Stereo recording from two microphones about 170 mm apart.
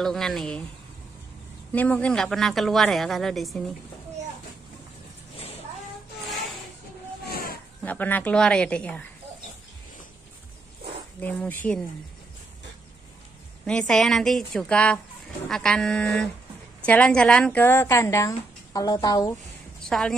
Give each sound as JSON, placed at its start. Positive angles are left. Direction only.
{"t": 0.0, "sound": "a woman's voice", "side_deg": 0}
{"t": 1.7, "sound": "a woman's voice", "side_deg": 10}
{"t": 7.2, "sound": "a sound", "side_deg": 60}
{"t": 7.8, "sound": "a woman's voice", "side_deg": 10}
{"t": 11.1, "sound": "a woman's voice", "side_deg": 10}
{"t": 13.7, "sound": "a woman's voice", "side_deg": 5}
{"t": 19.9, "sound": "a woman's voice", "side_deg": 5}